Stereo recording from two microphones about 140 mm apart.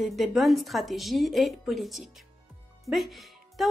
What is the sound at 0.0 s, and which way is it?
A woman's voice, centre (ahead or behind).